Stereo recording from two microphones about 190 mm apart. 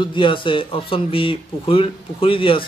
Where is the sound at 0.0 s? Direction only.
25° left (ahead or behind).